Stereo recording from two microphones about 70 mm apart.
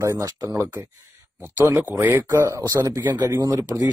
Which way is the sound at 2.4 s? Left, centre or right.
Right.